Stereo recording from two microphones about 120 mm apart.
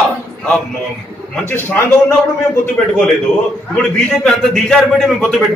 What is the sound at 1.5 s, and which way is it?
Speech, 20° left (ahead or behind).